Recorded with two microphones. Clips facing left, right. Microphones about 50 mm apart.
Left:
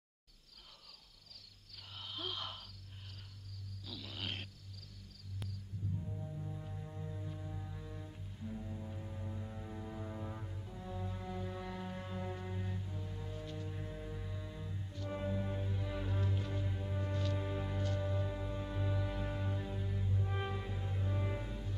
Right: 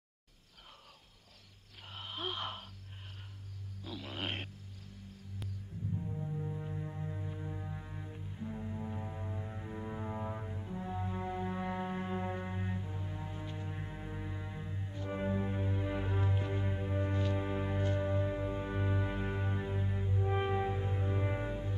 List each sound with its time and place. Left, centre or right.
2.0 s a sound: right
3.8 s wild animals: right
5.7 s music: right
6.0 s music: right